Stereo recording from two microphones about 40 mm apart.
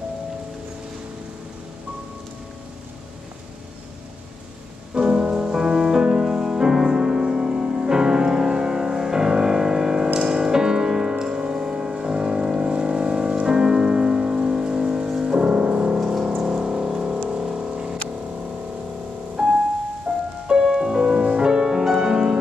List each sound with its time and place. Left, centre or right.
4.9 s music: centre
16.3 s a sound: right
17.3 s music: right
19.4 s music: centre
20.1 s music: right
20.6 s music: centre